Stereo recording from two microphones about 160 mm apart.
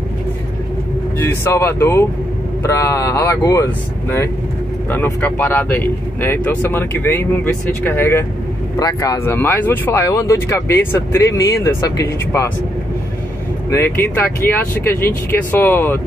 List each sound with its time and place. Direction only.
1.2 s speech: 15° left (ahead or behind)
4.9 s speech: 10° left (ahead or behind)
13.7 s speech: 15° left (ahead or behind)